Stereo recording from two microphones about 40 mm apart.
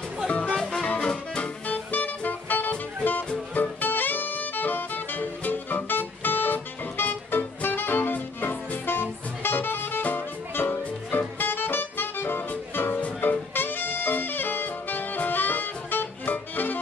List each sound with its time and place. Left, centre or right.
0.3 s music: left
0.6 s music: centre
0.8 s music: left
1.7 s music: left
13.2 s saxophone: left